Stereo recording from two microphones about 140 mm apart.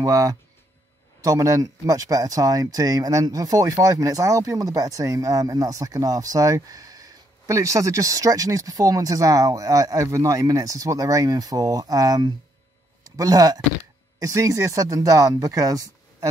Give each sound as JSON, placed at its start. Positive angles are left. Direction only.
{"t": 0.0, "sound": "speech", "side_deg": -25}